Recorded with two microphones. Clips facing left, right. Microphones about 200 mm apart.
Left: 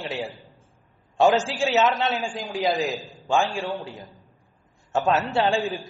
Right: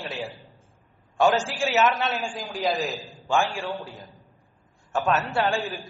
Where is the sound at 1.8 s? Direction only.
Centre (ahead or behind).